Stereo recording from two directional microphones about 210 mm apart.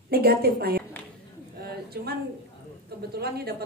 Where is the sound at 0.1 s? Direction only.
45° right (ahead or behind).